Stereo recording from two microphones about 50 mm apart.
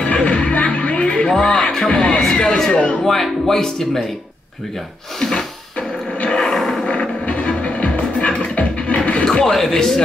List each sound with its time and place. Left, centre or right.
0.0 s music: left
1.3 s music: centre
1.9 s music: left
2.2 s a sound: centre
3.0 s speech: centre
5.8 s a sound: left
6.4 s a sound: centre
6.9 s music: left
9.2 s music: centre
9.5 s speech: centre